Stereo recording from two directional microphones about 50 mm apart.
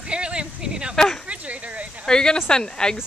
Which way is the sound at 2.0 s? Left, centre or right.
Centre.